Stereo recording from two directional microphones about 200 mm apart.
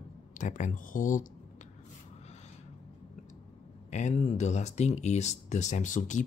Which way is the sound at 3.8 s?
35° left (ahead or behind).